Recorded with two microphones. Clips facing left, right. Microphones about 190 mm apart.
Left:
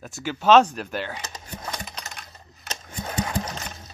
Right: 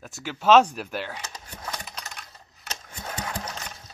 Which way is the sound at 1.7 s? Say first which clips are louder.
Left 2 dB; 5° right (ahead or behind).